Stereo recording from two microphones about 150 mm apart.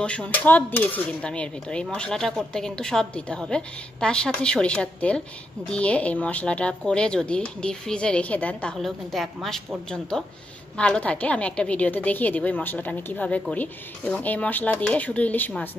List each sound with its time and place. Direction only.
0.0 s cutlery: 10° left (ahead or behind)
9.8 s speech: 5° left (ahead or behind)
10.8 s cutlery: 10° left (ahead or behind)